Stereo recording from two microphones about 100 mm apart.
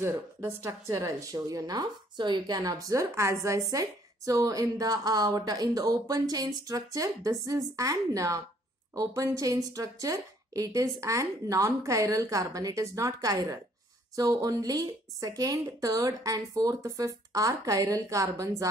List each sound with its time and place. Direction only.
0.0 s a woman's voice: 25° right (ahead or behind)